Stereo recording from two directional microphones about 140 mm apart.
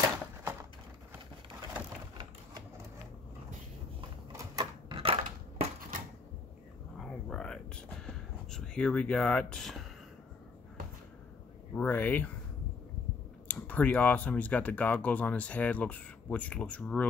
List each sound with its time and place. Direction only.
0.4 s a sound: 20° right (ahead or behind)
4.4 s typewriter: 25° right (ahead or behind)
4.9 s crushing: 40° right (ahead or behind)
5.9 s typewriter: 75° right (ahead or behind)
7.0 s a sound: 5° left (ahead or behind)
11.7 s speech: 15° left (ahead or behind)
13.5 s speech: 10° left (ahead or behind)